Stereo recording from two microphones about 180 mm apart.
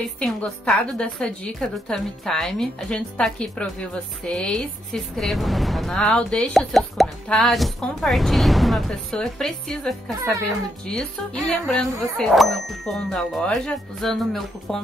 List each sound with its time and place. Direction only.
0.2 s a woman's voice: 5° left (ahead or behind)